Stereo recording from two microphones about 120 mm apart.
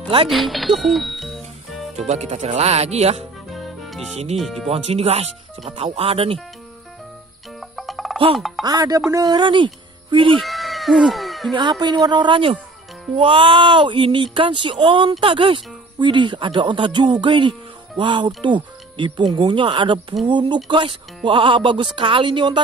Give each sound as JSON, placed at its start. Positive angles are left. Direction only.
{"t": 0.3, "sound": "music", "side_deg": 0}
{"t": 2.0, "sound": "speech", "side_deg": -65}
{"t": 3.5, "sound": "music", "side_deg": 0}
{"t": 4.1, "sound": "speech", "side_deg": -60}
{"t": 4.4, "sound": "speech", "side_deg": 0}
{"t": 4.8, "sound": "speech", "side_deg": -60}
{"t": 7.7, "sound": "music", "side_deg": 0}
{"t": 8.4, "sound": "speech", "side_deg": 0}
{"t": 8.6, "sound": "a woman's voice", "side_deg": -30}
{"t": 10.4, "sound": "a sound", "side_deg": 0}
{"t": 11.5, "sound": "a woman's voice", "side_deg": -40}